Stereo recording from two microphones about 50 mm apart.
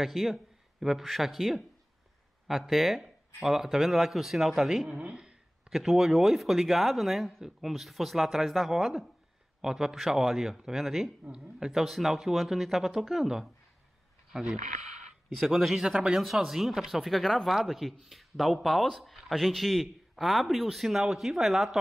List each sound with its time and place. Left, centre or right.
0.0 s speech: centre
4.8 s speech: right
5.2 s speech: centre
14.3 s speech: centre
15.2 s speech: centre